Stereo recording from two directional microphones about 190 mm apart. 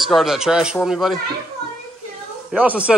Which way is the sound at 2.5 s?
5° right (ahead or behind).